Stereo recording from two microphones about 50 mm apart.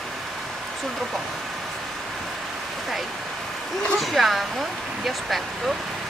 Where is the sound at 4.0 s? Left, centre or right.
Centre.